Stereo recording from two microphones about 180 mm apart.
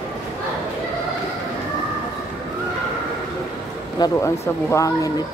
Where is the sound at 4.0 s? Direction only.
15° left (ahead or behind).